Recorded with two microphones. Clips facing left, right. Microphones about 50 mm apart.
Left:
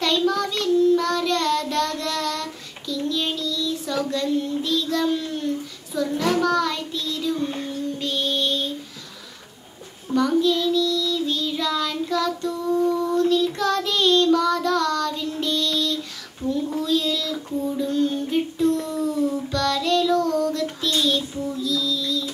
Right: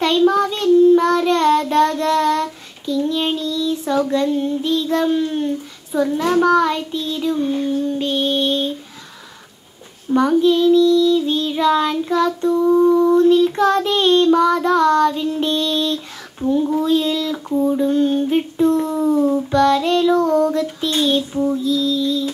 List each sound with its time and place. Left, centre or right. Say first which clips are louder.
0.0 s child singing: right 7 dB; right
10.3 s child singing: right 9 dB; right
16.7 s female singing: right 6 dB; right
20.8 s child singing: right 4 dB; right